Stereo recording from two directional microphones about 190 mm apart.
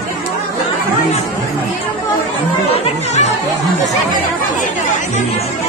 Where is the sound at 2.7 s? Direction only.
35° left (ahead or behind).